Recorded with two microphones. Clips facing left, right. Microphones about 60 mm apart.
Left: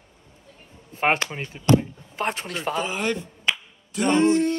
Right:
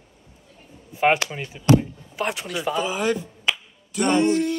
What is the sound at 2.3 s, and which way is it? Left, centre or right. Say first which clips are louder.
Speech: right 2 dB; left.